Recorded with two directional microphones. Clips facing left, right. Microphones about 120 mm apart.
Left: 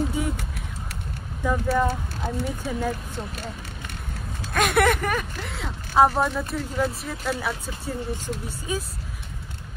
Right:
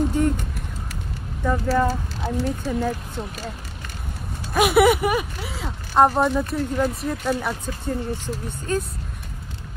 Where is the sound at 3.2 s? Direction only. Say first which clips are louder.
Right 3 dB; 10° right (ahead or behind).